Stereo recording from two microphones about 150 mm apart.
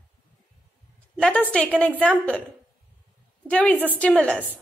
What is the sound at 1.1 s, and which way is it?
A woman's voice, 10° left (ahead or behind).